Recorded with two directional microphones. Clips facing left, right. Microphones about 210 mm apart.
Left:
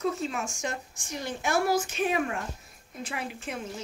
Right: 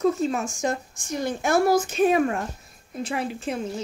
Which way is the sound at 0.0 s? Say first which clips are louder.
Right 7 dB; 40° right (ahead or behind).